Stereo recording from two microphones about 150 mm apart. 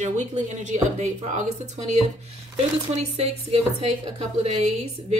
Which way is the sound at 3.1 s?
45° right (ahead or behind).